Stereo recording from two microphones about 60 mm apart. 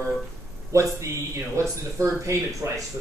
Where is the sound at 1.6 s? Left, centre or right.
Right.